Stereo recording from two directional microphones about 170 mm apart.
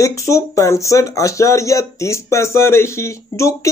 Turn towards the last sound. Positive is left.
turn(degrees=15)  # may be behind; listen again after turning